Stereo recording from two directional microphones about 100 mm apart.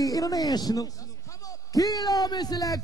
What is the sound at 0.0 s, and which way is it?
A man's voice, 35° left (ahead or behind).